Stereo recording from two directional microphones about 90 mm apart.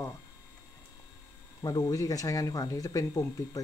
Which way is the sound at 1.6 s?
45° left (ahead or behind).